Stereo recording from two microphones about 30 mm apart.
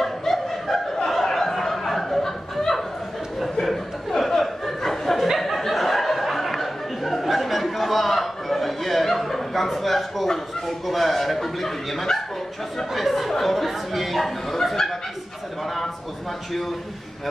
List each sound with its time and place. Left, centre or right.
0.0 s snicker: centre
4.2 s a sound: centre
10.9 s speech: centre